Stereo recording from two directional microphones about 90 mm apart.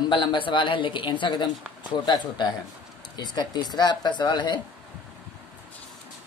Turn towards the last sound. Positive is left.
turn(degrees=55)  # may be behind; listen again after turning